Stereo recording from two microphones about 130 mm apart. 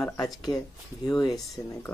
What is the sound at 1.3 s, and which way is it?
Speech, centre (ahead or behind).